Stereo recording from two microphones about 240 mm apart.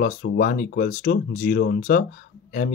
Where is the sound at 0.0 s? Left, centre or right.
Left.